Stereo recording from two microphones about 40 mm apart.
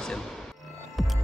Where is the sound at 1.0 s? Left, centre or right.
Centre.